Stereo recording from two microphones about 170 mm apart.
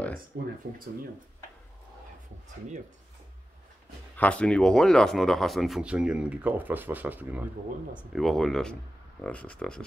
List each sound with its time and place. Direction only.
0.3 s speech: 65° right (ahead or behind)
4.2 s speech: 5° left (ahead or behind)